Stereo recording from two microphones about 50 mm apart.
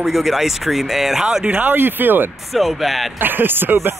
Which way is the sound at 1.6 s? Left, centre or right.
Right.